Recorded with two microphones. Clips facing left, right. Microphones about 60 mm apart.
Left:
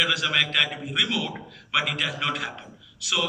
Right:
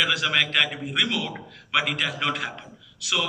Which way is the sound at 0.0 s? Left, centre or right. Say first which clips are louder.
Right 1 dB; right.